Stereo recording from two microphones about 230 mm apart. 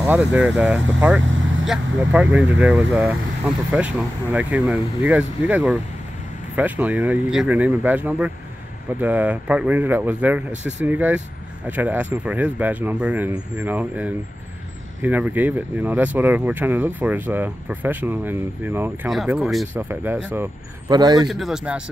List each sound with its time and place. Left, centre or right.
0.0 s speech: centre
21.3 s speech: centre